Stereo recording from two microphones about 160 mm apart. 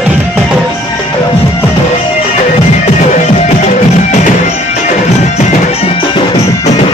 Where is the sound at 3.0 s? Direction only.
50° left (ahead or behind).